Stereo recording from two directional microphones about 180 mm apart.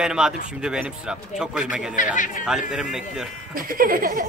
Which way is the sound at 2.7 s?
Centre (ahead or behind).